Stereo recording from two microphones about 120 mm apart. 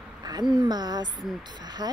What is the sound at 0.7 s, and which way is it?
Speech, 35° right (ahead or behind).